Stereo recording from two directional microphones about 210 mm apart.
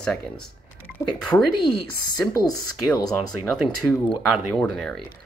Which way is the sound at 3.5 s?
5° left (ahead or behind).